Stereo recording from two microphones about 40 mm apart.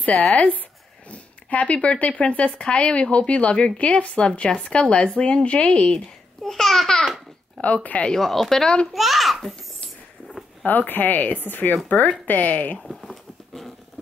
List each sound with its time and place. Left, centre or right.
0.2 s speech: centre
1.1 s speech: left
6.4 s speech: centre
7.6 s speech: left
8.2 s a child's voice: centre
10.6 s speech: left
12.7 s dog: centre